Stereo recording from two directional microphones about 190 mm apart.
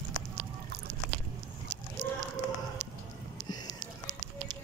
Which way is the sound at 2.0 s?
65° right (ahead or behind).